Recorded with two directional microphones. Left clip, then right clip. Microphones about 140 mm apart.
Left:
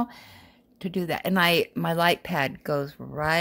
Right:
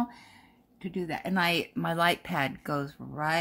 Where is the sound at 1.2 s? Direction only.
80° left.